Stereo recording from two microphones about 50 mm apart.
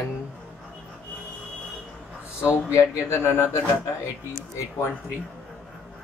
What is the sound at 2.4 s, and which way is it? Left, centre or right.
Speech, left.